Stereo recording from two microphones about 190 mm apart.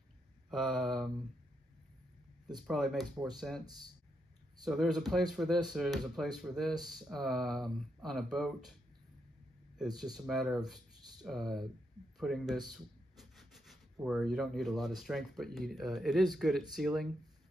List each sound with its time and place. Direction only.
0.5 s speech: centre (ahead or behind)
2.4 s speech: centre (ahead or behind)
4.6 s speech: centre (ahead or behind)
9.8 s speech: centre (ahead or behind)
12.2 s a sound: centre (ahead or behind)
14.0 s speech: centre (ahead or behind)